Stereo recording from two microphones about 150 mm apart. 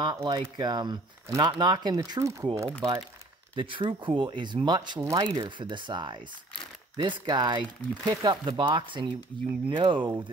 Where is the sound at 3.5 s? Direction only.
35° right (ahead or behind).